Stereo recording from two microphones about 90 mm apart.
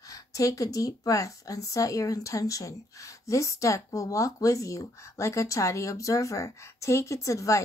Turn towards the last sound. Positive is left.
turn(degrees=35)  # may be behind; listen again after turning